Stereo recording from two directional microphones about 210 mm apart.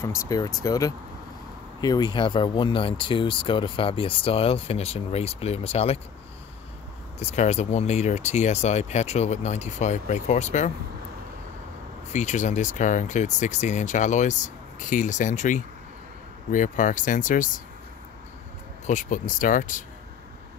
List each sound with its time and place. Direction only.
0.0 s speech: 15° left (ahead or behind)
7.2 s speech: 30° left (ahead or behind)
12.1 s speech: 35° left (ahead or behind)
18.9 s speech: 35° left (ahead or behind)